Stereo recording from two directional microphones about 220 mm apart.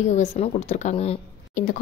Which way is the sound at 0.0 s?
30° left (ahead or behind).